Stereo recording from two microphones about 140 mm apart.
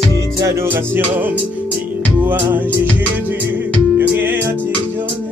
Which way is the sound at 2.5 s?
15° right (ahead or behind).